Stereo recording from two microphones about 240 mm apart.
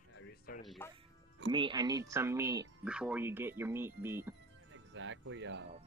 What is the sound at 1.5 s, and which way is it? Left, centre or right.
Speech, centre.